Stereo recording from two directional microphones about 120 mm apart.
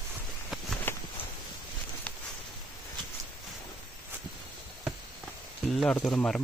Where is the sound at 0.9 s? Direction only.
15° left (ahead or behind).